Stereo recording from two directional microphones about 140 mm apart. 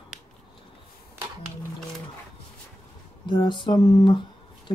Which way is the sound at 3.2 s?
35° left (ahead or behind).